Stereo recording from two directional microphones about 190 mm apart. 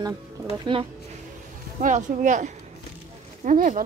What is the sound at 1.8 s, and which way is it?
Speech, 40° right (ahead or behind).